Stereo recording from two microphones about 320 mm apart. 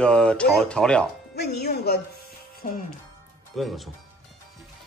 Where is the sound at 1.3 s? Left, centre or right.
Left.